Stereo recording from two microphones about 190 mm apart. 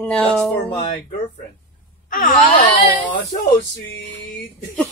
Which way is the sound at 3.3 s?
45° left (ahead or behind).